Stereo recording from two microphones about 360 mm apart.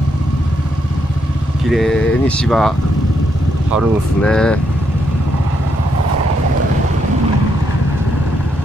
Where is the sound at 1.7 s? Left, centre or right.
Centre.